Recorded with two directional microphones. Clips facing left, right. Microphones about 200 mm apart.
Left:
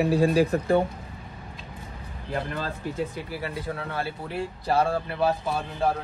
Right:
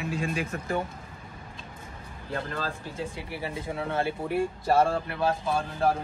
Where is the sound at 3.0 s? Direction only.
25° right (ahead or behind).